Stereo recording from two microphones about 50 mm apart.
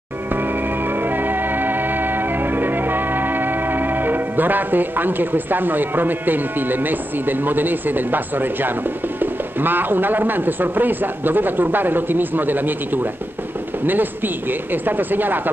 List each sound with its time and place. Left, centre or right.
0.3 s music: right
9.2 s speech: right